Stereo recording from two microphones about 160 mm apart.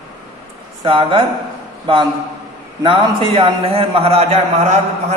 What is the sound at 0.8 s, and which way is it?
Speech, 35° right (ahead or behind).